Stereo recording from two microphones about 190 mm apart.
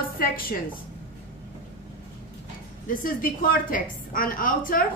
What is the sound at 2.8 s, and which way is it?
A woman's voice, 45° left (ahead or behind).